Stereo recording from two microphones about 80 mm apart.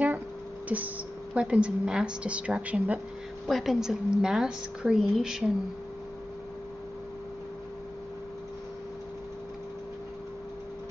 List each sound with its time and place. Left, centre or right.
0.7 s a woman's voice: centre
3.4 s a woman's voice: centre